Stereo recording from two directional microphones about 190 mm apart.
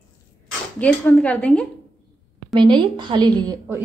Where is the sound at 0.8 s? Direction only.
5° left (ahead or behind).